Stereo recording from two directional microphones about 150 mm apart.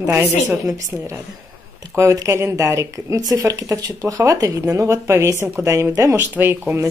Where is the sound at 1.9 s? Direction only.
20° right (ahead or behind).